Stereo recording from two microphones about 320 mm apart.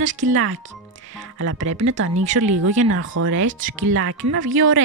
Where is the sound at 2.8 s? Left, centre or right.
Right.